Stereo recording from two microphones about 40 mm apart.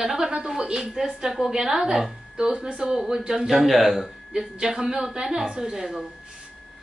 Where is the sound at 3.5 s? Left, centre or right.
Centre.